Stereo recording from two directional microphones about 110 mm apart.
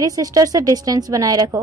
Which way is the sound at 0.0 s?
35° right (ahead or behind).